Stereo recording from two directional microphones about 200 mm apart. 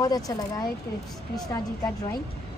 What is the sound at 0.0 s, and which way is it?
Speech, 20° left (ahead or behind).